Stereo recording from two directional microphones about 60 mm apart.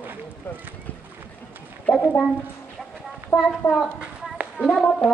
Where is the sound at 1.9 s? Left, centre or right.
Centre.